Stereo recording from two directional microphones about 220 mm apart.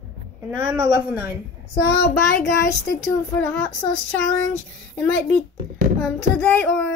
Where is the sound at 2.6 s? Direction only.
15° left (ahead or behind).